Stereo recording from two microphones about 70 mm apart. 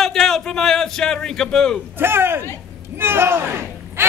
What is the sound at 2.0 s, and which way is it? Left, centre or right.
A man's voice, right.